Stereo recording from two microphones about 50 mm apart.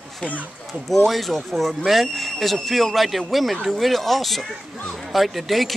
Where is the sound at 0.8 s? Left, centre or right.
Centre.